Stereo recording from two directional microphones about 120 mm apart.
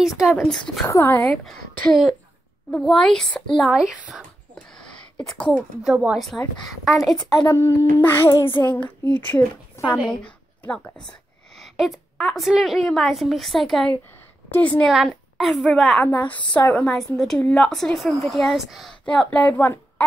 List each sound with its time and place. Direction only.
0.0 s a woman's voice: 5° right (ahead or behind)
0.8 s speech: 25° left (ahead or behind)
1.2 s a woman's voice: 5° left (ahead or behind)
4.6 s a woman's voice: 5° left (ahead or behind)
7.4 s child singing: 20° left (ahead or behind)
10.2 s a sound: 10° left (ahead or behind)
11.5 s a woman's voice: centre (ahead or behind)
14.5 s child singing: 15° left (ahead or behind)
14.9 s a woman's voice: centre (ahead or behind)
16.1 s child singing: 15° left (ahead or behind)
17.4 s a woman's voice: 10° left (ahead or behind)
19.0 s child singing: 10° left (ahead or behind)